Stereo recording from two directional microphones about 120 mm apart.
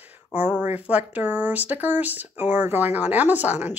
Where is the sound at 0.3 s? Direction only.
15° right (ahead or behind).